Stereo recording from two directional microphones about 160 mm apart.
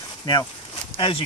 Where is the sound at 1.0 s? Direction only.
35° left (ahead or behind).